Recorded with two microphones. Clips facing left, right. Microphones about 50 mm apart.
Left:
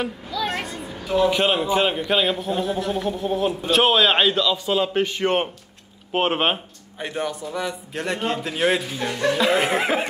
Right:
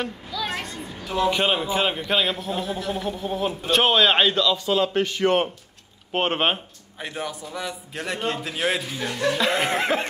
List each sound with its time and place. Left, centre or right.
0.0 s a woman's voice: centre
5.1 s speech: left
6.1 s a woman's voice: centre